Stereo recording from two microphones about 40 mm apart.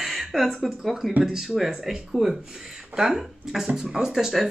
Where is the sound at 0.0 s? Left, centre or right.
Centre.